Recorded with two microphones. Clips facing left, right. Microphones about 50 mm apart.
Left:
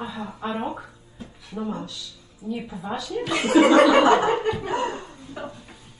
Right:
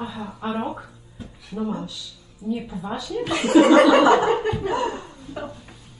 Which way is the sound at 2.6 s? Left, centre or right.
Centre.